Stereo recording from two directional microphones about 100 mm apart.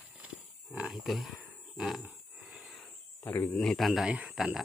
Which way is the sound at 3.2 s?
20° left (ahead or behind).